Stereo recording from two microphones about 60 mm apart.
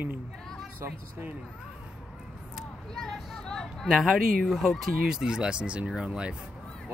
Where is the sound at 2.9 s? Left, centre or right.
Centre.